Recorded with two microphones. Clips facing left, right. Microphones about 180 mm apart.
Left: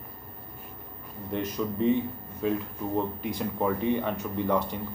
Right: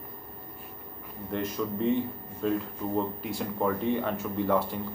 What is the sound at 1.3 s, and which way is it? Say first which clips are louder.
Speech: left 1 dB; centre (ahead or behind).